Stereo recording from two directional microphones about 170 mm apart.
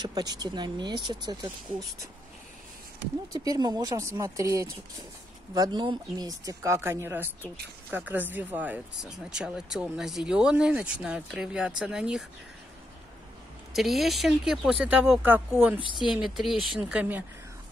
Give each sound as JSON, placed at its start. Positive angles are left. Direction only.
{"t": 0.0, "sound": "speech", "side_deg": -25}
{"t": 3.3, "sound": "speech", "side_deg": -20}
{"t": 13.7, "sound": "speech", "side_deg": 0}